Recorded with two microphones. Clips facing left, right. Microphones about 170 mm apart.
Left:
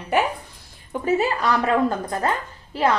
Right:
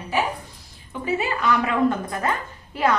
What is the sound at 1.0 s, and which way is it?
A woman's voice, 40° left (ahead or behind).